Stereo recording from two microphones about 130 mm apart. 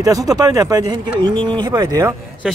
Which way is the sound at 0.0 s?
25° right (ahead or behind).